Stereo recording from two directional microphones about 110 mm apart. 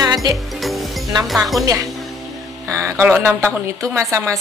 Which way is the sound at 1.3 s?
Centre (ahead or behind).